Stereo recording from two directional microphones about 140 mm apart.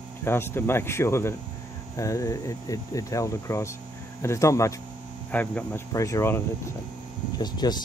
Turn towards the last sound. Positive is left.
turn(degrees=30)  # may be behind; listen again after turning